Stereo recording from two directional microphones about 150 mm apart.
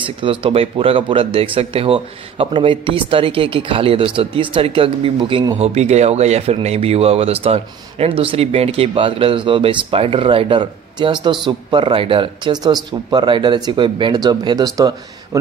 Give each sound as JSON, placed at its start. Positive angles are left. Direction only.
{"t": 0.0, "sound": "speech", "side_deg": -35}
{"t": 5.6, "sound": "speech", "side_deg": -45}